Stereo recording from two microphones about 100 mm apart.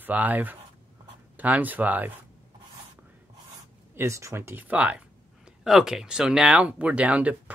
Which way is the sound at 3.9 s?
25° right (ahead or behind).